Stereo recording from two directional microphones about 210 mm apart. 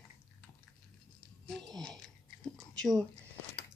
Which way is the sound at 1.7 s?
Centre (ahead or behind).